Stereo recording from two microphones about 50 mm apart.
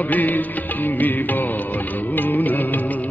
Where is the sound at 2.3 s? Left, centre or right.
Left.